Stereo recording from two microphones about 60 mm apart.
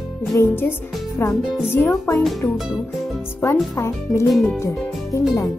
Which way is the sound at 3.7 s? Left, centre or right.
Left.